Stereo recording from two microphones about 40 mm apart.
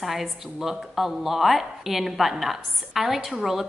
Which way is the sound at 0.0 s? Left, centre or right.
Centre.